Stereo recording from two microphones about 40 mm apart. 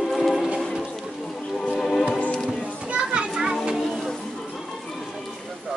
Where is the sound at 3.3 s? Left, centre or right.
Centre.